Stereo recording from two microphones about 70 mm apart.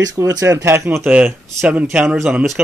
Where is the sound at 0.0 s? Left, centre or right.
Right.